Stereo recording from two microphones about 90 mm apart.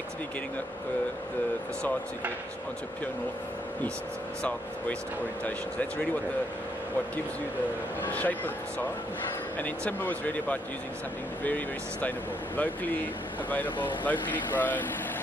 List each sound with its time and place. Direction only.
4.4 s speech: 15° left (ahead or behind)
8.1 s speech: 15° left (ahead or behind)
14.0 s speech: 20° left (ahead or behind)